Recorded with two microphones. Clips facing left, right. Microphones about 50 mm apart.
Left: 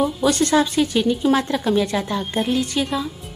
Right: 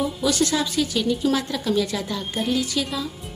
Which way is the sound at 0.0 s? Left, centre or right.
Left.